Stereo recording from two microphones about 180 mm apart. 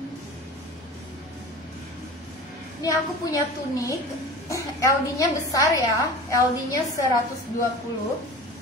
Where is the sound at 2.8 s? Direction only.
20° left (ahead or behind).